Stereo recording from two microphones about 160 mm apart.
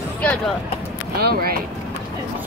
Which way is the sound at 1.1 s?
75° right (ahead or behind).